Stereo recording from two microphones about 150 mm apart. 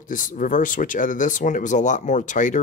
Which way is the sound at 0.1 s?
60° left (ahead or behind).